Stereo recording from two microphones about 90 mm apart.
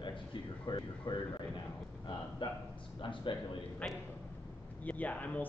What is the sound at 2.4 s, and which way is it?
Speech, 60° left (ahead or behind).